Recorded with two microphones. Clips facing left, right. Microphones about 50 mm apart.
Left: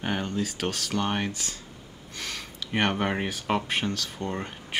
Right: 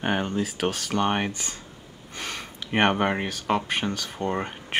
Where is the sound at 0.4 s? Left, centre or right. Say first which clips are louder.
Right 3 dB; centre.